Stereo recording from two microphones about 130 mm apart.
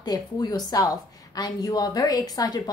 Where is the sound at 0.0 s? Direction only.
30° left (ahead or behind).